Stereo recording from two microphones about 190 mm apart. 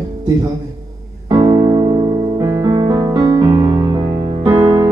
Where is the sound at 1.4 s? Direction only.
30° right (ahead or behind).